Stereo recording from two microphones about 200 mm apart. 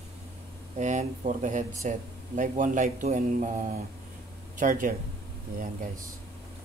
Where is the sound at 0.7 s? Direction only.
40° right (ahead or behind).